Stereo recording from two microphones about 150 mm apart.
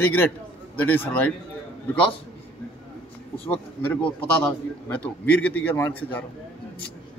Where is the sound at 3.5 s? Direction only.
10° left (ahead or behind).